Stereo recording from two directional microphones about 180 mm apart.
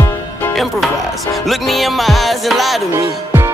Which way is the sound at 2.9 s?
15° right (ahead or behind).